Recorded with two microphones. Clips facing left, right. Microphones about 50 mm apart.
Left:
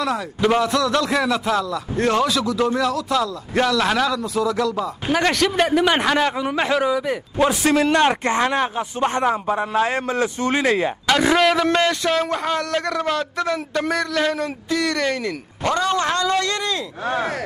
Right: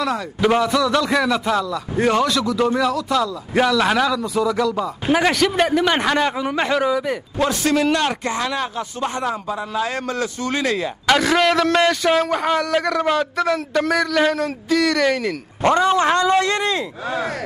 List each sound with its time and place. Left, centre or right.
0.0 s a man's voice: centre
7.3 s a man's voice: centre
7.9 s a man's voice: left
11.3 s a man's voice: centre
15.6 s speech: centre
17.0 s speech: left